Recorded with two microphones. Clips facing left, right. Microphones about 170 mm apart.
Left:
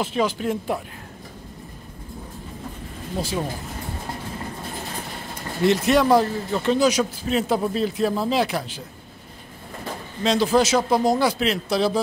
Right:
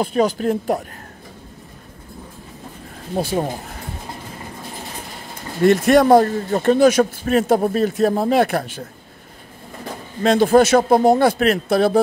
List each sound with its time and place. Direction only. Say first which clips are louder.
0.0 s speech: right 5 dB; 45° right (ahead or behind)
3.2 s speech: right 6 dB; 55° right (ahead or behind)
5.6 s speech: right 5 dB; 50° right (ahead or behind)
10.2 s speech: right 6 dB; 55° right (ahead or behind)